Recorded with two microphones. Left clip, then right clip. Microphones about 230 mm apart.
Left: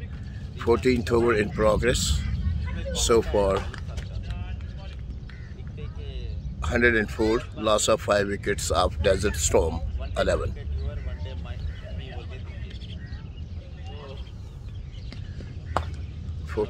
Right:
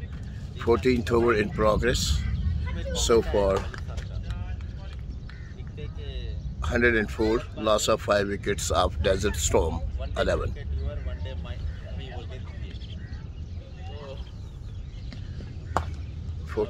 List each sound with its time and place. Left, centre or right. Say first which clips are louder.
0.6 s speech: left 1 dB; centre
6.6 s speech: left 1 dB; centre
10.9 s vehicle: right 3 dB; right